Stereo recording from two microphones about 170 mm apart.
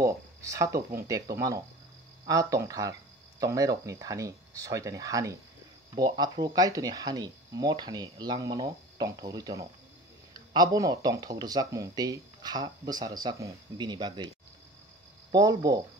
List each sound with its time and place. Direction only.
0.0 s speech: 20° right (ahead or behind)
15.3 s speech: 20° right (ahead or behind)